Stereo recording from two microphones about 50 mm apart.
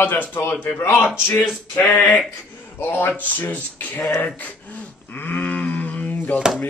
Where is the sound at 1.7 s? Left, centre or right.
Left.